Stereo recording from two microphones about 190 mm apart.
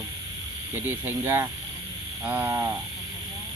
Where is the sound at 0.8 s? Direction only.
10° right (ahead or behind).